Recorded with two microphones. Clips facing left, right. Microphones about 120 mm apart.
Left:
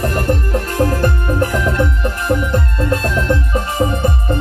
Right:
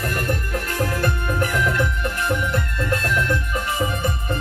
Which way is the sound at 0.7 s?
35° left (ahead or behind).